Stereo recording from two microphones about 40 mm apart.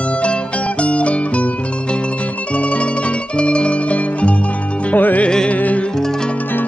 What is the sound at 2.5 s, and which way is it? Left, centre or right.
Music, left.